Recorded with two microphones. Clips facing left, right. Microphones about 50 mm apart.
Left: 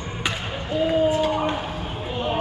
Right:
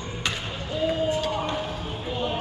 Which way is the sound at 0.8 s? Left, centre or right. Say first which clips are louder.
Left 5 dB; centre.